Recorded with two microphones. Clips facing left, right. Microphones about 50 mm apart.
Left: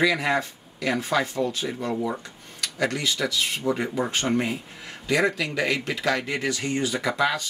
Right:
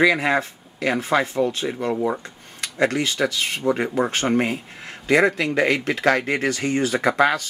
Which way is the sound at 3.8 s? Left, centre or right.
Centre.